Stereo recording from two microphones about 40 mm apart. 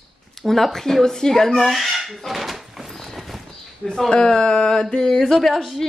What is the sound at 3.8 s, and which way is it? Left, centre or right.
Speech, centre.